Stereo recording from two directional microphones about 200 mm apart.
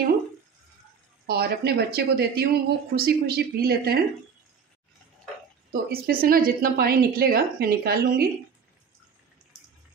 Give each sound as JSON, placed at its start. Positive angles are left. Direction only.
{"t": 1.2, "sound": "speech", "side_deg": -50}
{"t": 5.7, "sound": "speech", "side_deg": -50}